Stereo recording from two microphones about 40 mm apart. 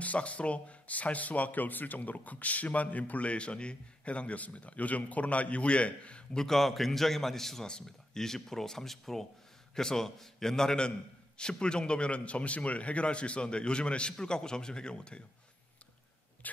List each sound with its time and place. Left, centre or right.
0.0 s speech: left
6.3 s a man's voice: centre